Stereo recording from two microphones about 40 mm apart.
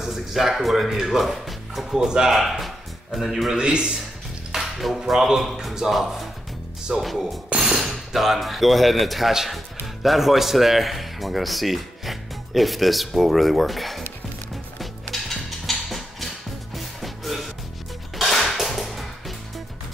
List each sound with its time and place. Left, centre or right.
0.0 s speech: centre
2.0 s speech: centre
2.3 s speech: centre
3.5 s a man's voice: right
4.6 s speech: centre
14.8 s music: centre